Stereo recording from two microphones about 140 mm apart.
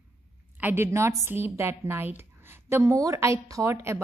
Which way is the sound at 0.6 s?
15° right (ahead or behind).